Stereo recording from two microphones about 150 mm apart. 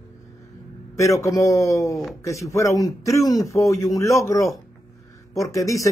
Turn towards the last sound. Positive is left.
turn(degrees=20)  # may be behind; listen again after turning